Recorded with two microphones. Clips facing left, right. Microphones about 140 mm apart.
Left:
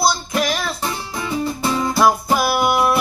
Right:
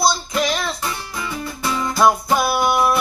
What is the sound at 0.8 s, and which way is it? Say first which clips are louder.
Music: left 2 dB; 25° left (ahead or behind).